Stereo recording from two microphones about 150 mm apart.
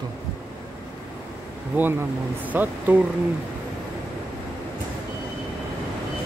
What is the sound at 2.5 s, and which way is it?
Speech, 10° right (ahead or behind).